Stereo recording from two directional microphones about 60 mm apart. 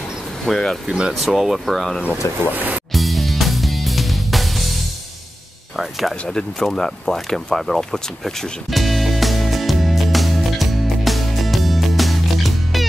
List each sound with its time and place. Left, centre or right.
0.5 s speech: centre
0.8 s speech: centre
1.1 s speech: centre
2.5 s speech: right
2.9 s music: centre
5.8 s speech: centre
6.2 s a sound: centre